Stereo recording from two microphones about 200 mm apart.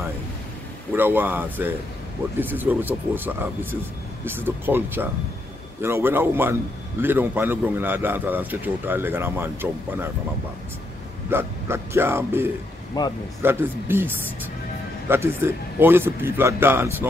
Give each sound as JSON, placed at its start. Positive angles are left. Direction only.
{"t": 0.9, "sound": "a man's voice", "side_deg": -10}
{"t": 11.2, "sound": "a man's voice", "side_deg": -10}
{"t": 12.9, "sound": "speech", "side_deg": 20}
{"t": 13.4, "sound": "a man's voice", "side_deg": -10}